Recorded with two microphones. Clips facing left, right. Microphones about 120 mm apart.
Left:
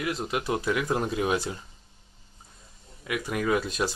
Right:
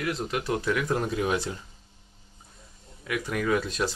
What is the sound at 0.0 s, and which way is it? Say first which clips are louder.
Speech: even; 15° left (ahead or behind).